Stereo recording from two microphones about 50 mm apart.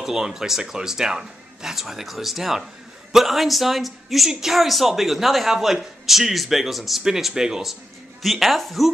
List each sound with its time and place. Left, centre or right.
0.0 s a man's voice: centre
8.2 s speech: centre